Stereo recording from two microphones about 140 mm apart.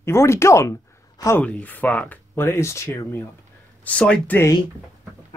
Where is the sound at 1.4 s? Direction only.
10° left (ahead or behind).